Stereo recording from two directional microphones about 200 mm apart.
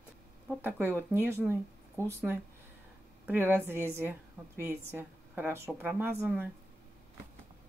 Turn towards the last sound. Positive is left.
turn(degrees=-10)  # may be behind; listen again after turning